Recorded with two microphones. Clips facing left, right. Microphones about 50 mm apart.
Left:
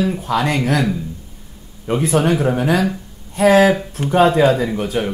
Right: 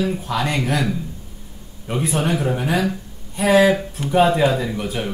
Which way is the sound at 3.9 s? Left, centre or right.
Left.